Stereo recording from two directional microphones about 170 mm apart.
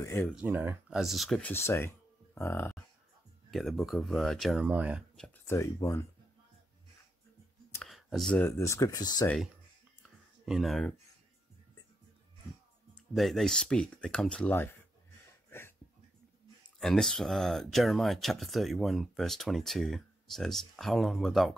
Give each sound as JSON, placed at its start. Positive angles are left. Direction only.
{"t": 0.0, "sound": "speech", "side_deg": 15}
{"t": 0.3, "sound": "speech", "side_deg": -10}
{"t": 1.5, "sound": "speech", "side_deg": 15}
{"t": 3.4, "sound": "speech", "side_deg": 0}
{"t": 5.5, "sound": "speech", "side_deg": 20}
{"t": 7.8, "sound": "speech", "side_deg": 0}
{"t": 10.0, "sound": "a sound", "side_deg": 0}
{"t": 13.1, "sound": "speech", "side_deg": 0}
{"t": 16.8, "sound": "speech", "side_deg": 5}